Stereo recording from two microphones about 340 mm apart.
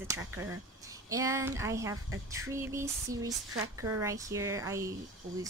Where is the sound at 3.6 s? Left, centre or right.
Right.